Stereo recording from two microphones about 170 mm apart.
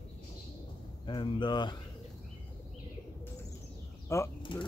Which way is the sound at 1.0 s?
30° left (ahead or behind).